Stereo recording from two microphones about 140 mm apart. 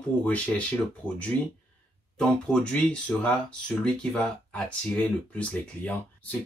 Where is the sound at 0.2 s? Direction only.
10° left (ahead or behind).